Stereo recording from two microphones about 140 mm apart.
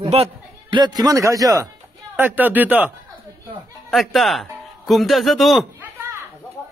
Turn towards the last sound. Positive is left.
turn(degrees=0)  # may be behind; listen again after turning